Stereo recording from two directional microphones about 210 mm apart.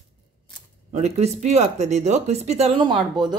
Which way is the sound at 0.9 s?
30° right (ahead or behind).